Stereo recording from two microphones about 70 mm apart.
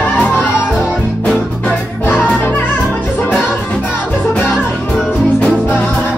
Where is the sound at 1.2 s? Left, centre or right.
Centre.